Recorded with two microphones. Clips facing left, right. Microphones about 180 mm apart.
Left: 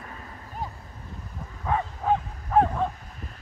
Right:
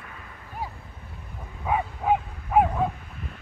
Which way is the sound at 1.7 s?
10° right (ahead or behind).